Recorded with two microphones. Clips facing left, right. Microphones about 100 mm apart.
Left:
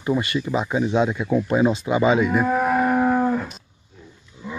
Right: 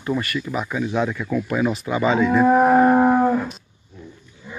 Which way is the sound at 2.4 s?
40° right (ahead or behind).